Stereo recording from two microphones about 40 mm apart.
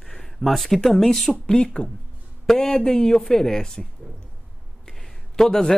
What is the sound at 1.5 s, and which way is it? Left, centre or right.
Speech, centre.